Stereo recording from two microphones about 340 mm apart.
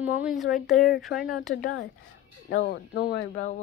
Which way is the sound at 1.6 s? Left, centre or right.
Left.